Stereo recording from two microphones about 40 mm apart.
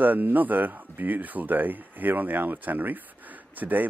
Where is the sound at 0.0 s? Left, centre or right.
Right.